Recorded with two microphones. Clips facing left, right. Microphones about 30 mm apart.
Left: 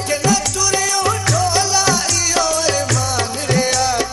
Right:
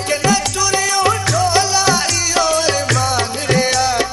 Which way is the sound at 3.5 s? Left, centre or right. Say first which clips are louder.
Right 2 dB; centre.